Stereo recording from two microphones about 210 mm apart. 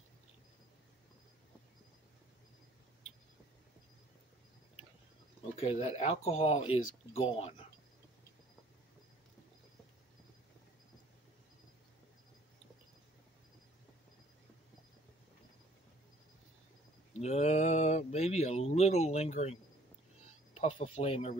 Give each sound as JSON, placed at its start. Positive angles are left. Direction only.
{"t": 5.6, "sound": "speech", "side_deg": 30}
{"t": 17.1, "sound": "a sound", "side_deg": 30}
{"t": 20.5, "sound": "speech", "side_deg": 30}